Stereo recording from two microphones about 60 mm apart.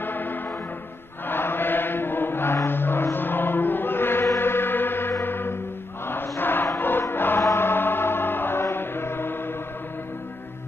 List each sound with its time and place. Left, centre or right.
0.0 s music: left
1.2 s chant: left
4.4 s gong: left
5.2 s music: left
6.0 s chant: left
6.8 s music: left